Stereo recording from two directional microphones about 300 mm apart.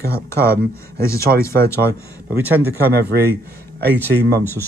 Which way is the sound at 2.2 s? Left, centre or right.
Centre.